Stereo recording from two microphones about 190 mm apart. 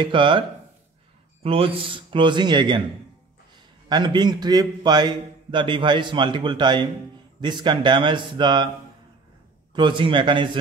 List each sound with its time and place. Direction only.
0.0 s a man's voice: 25° right (ahead or behind)
3.9 s a man's voice: 25° right (ahead or behind)
9.8 s a man's voice: 25° right (ahead or behind)